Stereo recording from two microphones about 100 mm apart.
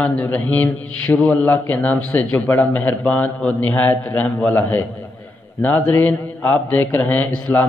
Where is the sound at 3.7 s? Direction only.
20° left (ahead or behind).